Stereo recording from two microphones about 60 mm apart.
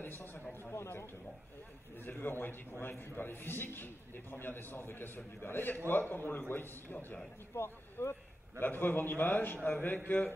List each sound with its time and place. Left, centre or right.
0.0 s a man's voice: left
2.0 s a man's voice: left